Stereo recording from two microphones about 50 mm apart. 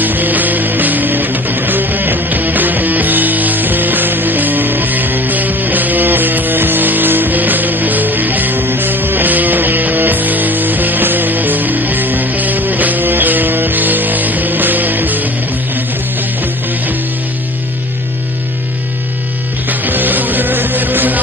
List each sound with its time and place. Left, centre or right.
0.0 s music: right
19.7 s music: right